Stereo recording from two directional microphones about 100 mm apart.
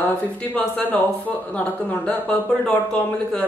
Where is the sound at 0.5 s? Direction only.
15° left (ahead or behind).